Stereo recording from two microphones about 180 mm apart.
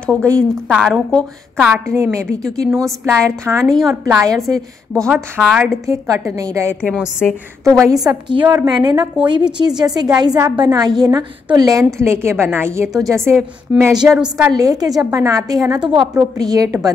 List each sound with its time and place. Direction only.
0.0 s a woman's voice: 5° left (ahead or behind)
3.3 s a woman's voice: 15° right (ahead or behind)
4.9 s a woman's voice: centre (ahead or behind)
5.9 s a woman's voice: 15° right (ahead or behind)
7.0 s a woman's voice: 5° right (ahead or behind)
7.7 s a woman's voice: 20° right (ahead or behind)
14.5 s a woman's voice: 20° right (ahead or behind)